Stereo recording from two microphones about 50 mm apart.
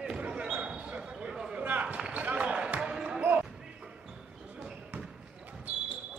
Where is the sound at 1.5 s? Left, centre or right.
Right; by 3.2 s centre.